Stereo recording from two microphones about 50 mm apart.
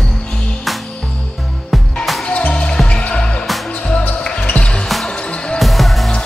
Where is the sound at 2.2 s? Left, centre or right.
Left.